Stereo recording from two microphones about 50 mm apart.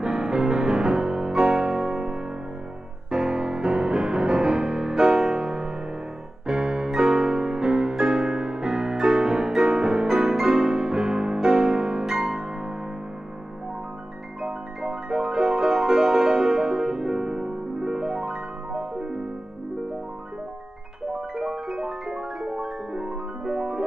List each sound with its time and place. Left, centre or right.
0.0 s music: centre
14.4 s music: centre
21.1 s music: centre